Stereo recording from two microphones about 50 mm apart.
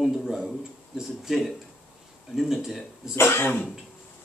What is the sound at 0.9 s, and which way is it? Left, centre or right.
Speech, centre.